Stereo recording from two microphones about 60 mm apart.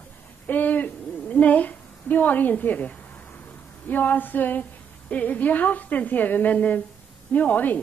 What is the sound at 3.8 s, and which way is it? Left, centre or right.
A woman's voice, left.